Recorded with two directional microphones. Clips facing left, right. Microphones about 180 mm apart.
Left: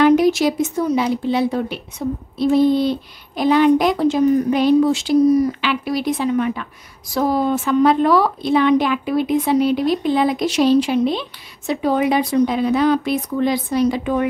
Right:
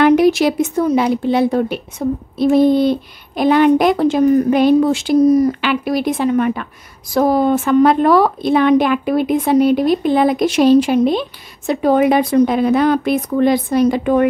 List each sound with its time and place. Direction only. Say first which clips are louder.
0.0 s a woman's voice: right 2 dB; 60° right (ahead or behind)